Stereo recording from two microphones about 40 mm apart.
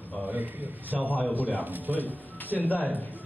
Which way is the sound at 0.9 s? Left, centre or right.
Centre.